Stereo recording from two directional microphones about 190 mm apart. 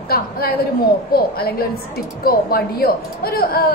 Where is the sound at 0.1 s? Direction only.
55° left (ahead or behind).